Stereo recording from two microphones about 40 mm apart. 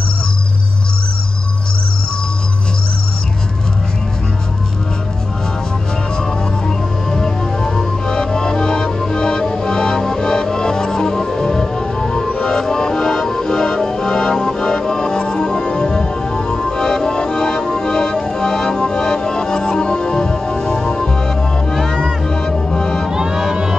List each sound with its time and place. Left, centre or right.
7.1 s music: centre
21.7 s music: centre
22.3 s music: centre
23.0 s music: centre